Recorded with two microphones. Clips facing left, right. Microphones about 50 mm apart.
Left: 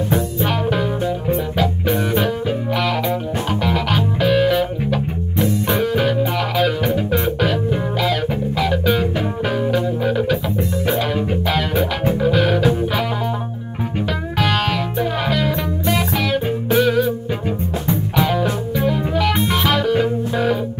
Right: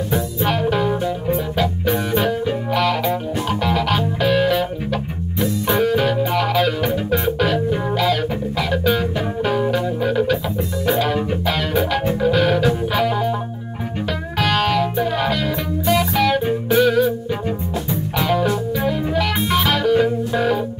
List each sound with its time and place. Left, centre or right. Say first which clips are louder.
0.4 s music: right 1 dB; centre
14.4 s music: right 2 dB; centre
18.1 s music: right 1 dB; centre